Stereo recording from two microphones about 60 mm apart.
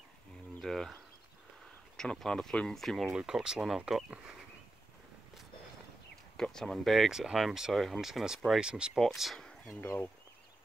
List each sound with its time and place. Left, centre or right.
0.6 s speech: centre
2.0 s speech: centre
3.1 s speech: centre
6.3 s speech: centre
7.1 s speech: centre
8.5 s speech: centre
8.9 s speech: centre
9.4 s a sound: centre